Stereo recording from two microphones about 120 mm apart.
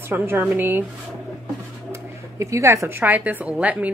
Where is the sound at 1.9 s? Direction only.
25° right (ahead or behind).